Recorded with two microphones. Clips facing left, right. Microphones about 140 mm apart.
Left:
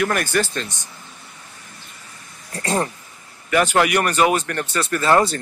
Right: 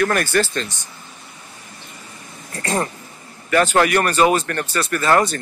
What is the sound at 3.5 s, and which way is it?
Speech, 10° left (ahead or behind).